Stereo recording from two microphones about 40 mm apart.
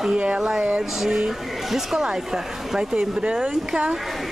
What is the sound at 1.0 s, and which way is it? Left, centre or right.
Speech, centre.